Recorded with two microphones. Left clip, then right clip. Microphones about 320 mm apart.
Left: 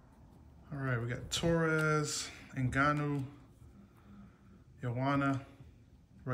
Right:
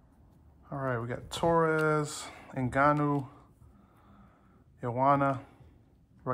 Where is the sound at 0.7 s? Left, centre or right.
Centre.